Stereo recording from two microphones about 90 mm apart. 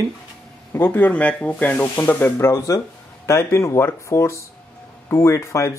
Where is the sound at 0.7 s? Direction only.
20° left (ahead or behind).